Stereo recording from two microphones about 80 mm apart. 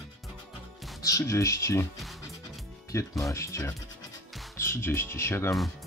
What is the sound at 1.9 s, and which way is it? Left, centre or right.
Music, centre.